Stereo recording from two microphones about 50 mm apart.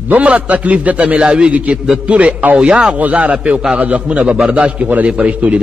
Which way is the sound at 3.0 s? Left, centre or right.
Right.